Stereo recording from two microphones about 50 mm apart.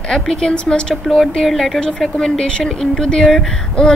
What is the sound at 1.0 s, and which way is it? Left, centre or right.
Speech, centre.